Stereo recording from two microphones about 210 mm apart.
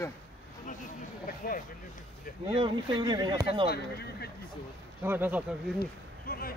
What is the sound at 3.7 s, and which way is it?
Speech, 50° left (ahead or behind).